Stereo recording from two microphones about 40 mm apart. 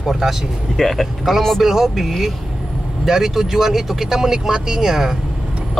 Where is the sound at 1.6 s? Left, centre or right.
Centre.